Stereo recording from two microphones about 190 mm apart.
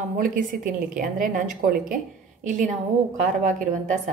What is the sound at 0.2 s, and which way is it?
A woman's voice, 45° right (ahead or behind).